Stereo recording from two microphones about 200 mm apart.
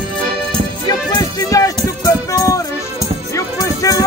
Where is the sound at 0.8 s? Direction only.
20° left (ahead or behind).